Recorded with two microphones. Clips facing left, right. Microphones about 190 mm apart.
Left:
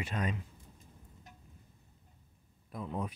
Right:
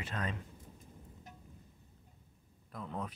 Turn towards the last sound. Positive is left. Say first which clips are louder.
# left 3 dB
turn(degrees=10)  # may be behind; listen again after turning